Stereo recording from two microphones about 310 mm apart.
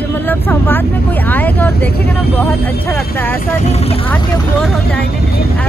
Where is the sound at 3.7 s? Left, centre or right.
Centre.